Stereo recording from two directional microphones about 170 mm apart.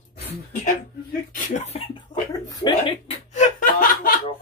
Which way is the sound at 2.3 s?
20° left (ahead or behind).